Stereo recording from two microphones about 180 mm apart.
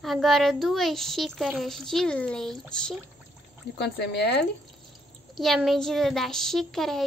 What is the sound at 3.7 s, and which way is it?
Speech, 70° left (ahead or behind).